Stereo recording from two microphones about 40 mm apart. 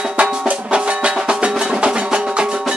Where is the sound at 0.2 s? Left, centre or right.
Right.